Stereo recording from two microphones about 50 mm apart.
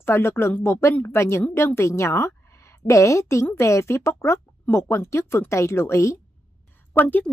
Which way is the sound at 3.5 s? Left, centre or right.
Left.